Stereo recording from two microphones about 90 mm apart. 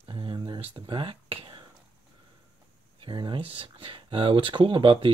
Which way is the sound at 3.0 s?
70° right (ahead or behind).